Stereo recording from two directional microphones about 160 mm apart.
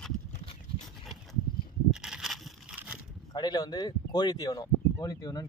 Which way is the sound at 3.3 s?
25° left (ahead or behind).